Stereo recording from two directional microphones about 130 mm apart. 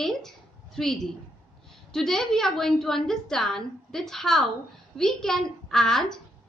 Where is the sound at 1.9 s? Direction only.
5° left (ahead or behind).